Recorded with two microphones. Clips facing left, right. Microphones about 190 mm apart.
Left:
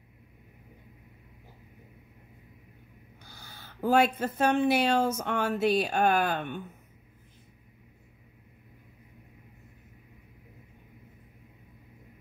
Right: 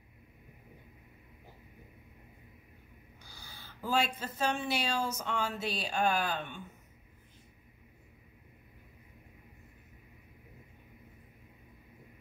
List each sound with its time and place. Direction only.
3.3 s speech: 55° left (ahead or behind)